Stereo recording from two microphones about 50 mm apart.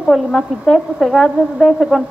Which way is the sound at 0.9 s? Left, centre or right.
Centre.